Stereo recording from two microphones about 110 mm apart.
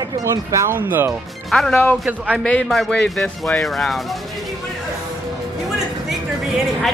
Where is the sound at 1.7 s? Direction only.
20° left (ahead or behind).